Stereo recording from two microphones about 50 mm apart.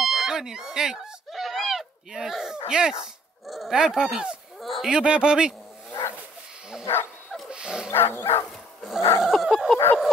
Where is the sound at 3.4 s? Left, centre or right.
Centre.